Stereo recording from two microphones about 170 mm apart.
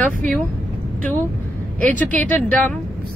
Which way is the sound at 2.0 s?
10° left (ahead or behind).